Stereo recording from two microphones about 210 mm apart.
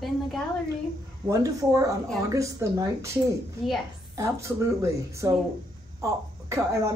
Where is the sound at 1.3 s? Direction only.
15° right (ahead or behind).